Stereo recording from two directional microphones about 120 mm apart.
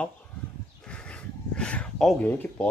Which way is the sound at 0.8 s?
10° left (ahead or behind).